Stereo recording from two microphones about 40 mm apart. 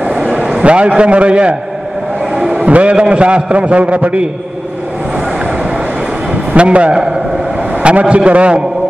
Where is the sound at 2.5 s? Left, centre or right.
Right.